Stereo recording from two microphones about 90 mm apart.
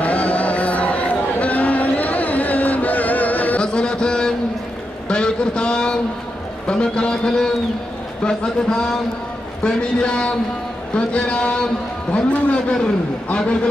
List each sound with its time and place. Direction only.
0.0 s music: 15° left (ahead or behind)
5.0 s a sound: 10° left (ahead or behind)
6.7 s a man's voice: 10° left (ahead or behind)